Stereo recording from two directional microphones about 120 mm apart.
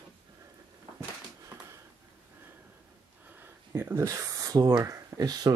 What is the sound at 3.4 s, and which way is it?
Speech, 20° right (ahead or behind).